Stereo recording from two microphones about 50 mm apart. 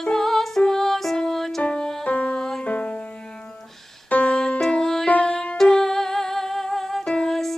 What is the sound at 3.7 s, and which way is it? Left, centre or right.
Music, centre.